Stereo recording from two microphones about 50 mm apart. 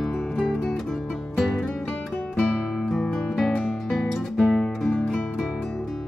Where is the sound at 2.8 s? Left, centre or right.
Centre.